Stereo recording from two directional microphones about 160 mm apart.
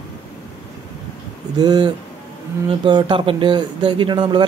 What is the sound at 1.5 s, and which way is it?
Speech, 25° right (ahead or behind).